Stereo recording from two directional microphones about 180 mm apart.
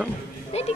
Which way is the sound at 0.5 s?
35° left (ahead or behind).